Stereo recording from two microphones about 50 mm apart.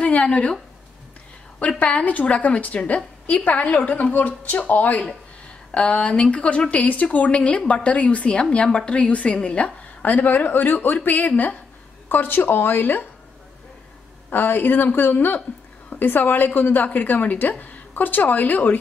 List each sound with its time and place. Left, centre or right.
0.0 s a sound: left
1.8 s a woman's voice: left
14.3 s a woman's voice: left